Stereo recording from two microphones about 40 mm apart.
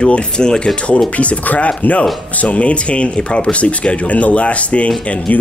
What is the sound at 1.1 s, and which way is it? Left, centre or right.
Speech, left.